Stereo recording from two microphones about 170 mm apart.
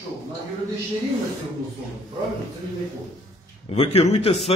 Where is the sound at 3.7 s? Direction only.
40° left (ahead or behind).